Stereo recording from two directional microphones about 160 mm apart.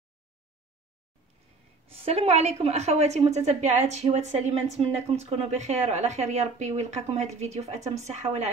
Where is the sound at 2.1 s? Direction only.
40° right (ahead or behind).